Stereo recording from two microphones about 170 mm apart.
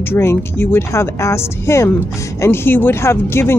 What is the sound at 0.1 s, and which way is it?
Speech, 15° left (ahead or behind).